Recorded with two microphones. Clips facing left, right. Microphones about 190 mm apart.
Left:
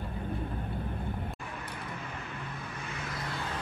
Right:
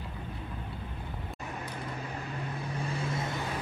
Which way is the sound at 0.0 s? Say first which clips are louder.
Left 5 dB; 50° left (ahead or behind).